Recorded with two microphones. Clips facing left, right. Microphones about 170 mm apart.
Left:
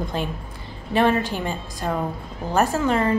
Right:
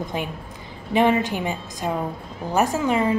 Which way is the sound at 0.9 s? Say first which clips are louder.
Right 1 dB; 15° right (ahead or behind).